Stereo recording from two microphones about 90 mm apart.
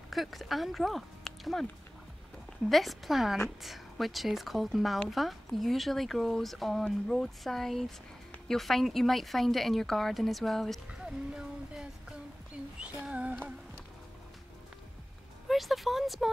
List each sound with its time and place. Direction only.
0.1 s speech: centre (ahead or behind)
2.7 s a woman's voice: centre (ahead or behind)
10.9 s music: 10° right (ahead or behind)
12.8 s female singing: 15° right (ahead or behind)
15.4 s a sound: centre (ahead or behind)